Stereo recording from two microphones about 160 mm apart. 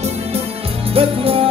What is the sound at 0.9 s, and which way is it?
Music, 35° right (ahead or behind).